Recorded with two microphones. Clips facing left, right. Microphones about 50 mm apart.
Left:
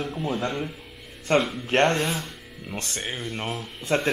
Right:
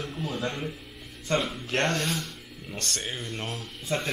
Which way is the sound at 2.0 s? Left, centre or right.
Centre.